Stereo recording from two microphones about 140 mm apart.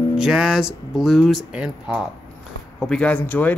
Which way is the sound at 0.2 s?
5° right (ahead or behind).